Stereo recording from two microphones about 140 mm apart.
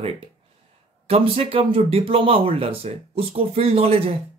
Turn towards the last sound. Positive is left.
turn(degrees=-45)  # may be behind; listen again after turning